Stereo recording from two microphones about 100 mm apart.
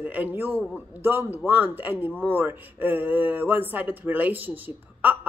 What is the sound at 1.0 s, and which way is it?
Speech, 20° right (ahead or behind).